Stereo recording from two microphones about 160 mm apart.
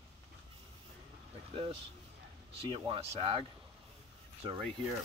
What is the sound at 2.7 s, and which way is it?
Speech, 35° right (ahead or behind).